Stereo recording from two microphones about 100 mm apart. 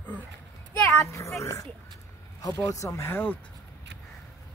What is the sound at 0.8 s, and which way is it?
Speech, 30° left (ahead or behind).